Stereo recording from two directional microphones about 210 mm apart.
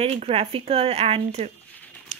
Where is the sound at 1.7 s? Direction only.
5° left (ahead or behind).